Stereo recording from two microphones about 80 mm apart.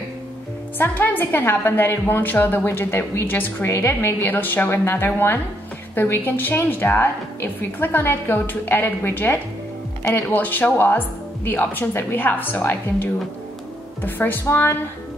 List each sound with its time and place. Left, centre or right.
0.7 s a woman's voice: left